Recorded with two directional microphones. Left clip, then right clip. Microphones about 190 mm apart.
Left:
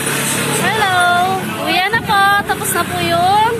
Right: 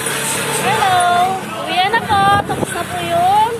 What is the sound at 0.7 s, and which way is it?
Music, 10° left (ahead or behind).